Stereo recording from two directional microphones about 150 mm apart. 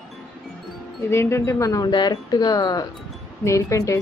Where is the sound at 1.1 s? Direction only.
20° left (ahead or behind).